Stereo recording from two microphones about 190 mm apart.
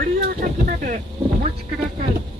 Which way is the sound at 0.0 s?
50° right (ahead or behind).